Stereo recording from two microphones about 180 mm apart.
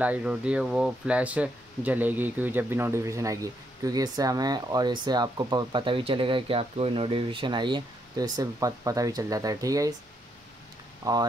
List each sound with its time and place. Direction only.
0.0 s speech: 10° right (ahead or behind)
11.0 s speech: 20° right (ahead or behind)